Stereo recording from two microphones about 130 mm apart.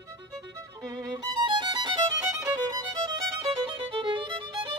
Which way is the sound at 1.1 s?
40° right (ahead or behind).